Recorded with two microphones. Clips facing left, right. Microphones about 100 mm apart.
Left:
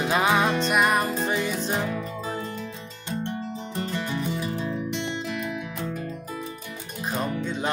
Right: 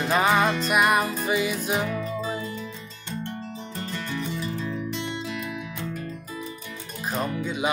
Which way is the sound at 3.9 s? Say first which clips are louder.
Left 1 dB; 20° left (ahead or behind).